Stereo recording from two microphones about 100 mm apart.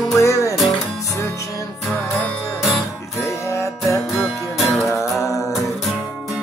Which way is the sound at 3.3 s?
30° left (ahead or behind).